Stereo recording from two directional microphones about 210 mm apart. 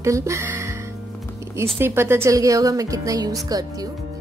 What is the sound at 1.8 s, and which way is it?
A woman's voice, 10° right (ahead or behind).